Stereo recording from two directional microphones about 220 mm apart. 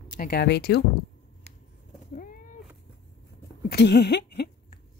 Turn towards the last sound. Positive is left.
turn(degrees=50)  # may be behind; listen again after turning